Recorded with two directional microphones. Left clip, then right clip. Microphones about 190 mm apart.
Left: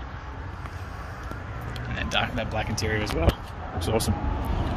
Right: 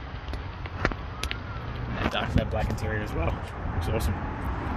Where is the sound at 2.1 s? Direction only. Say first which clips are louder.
Left 6 dB; 15° right (ahead or behind).